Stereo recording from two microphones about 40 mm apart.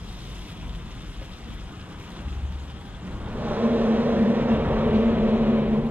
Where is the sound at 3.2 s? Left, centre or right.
Right.